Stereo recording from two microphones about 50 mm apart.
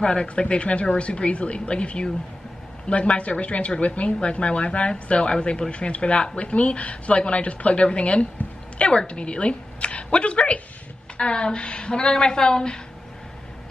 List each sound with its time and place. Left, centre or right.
0.0 s a woman's voice: centre